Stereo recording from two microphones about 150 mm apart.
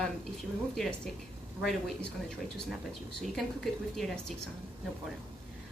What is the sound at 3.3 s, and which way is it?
A woman's voice, centre (ahead or behind).